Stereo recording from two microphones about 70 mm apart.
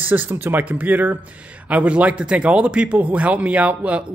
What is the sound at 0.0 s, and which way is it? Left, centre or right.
Speech, right.